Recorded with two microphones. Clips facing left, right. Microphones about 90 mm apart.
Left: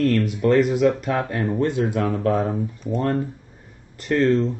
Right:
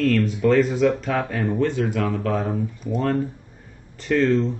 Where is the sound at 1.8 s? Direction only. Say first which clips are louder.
Left 2 dB; 30° left (ahead or behind).